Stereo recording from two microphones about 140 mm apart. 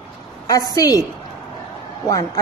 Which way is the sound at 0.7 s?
25° left (ahead or behind).